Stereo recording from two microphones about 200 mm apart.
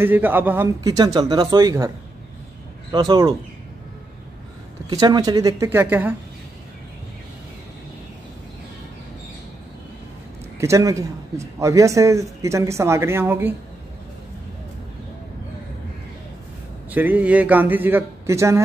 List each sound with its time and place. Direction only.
0.0 s speech: 10° right (ahead or behind)
2.9 s speech: 20° right (ahead or behind)
4.8 s speech: 20° right (ahead or behind)
10.6 s speech: 15° right (ahead or behind)
16.9 s speech: 10° right (ahead or behind)